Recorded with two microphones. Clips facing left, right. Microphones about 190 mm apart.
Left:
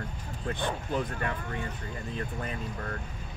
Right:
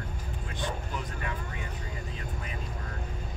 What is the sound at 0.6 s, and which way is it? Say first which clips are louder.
Speech: left 4 dB; 55° left (ahead or behind).